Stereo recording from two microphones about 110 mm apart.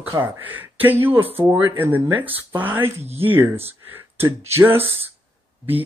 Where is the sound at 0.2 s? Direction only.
15° right (ahead or behind).